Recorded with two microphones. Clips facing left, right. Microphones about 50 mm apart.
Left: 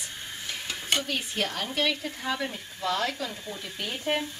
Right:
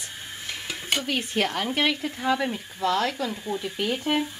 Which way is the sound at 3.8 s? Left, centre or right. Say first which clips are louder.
Right 3 dB; right.